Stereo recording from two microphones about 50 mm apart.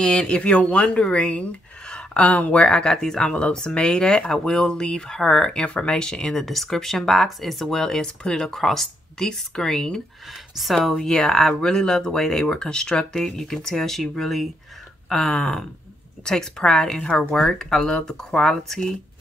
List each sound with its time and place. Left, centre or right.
0.0 s speech: centre
2.2 s speech: left
2.6 s speech: centre
10.5 s speech: centre